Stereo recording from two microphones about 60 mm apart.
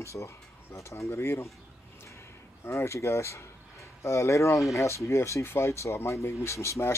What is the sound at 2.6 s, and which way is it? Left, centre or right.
Speech, left.